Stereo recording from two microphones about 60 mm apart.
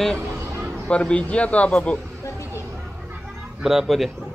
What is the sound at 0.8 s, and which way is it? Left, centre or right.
Speech, centre.